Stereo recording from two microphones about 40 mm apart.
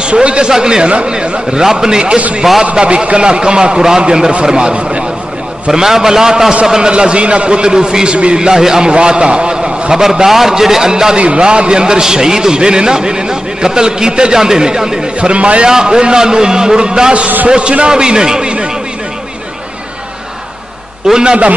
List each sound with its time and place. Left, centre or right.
0.0 s a man's voice: right
0.5 s a man's voice: centre
2.1 s a man's voice: right
5.7 s a man's voice: centre
8.5 s a man's voice: centre
15.1 s a man's voice: right
21.1 s a man's voice: right